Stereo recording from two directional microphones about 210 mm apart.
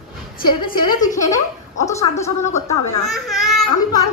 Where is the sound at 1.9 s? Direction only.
15° left (ahead or behind).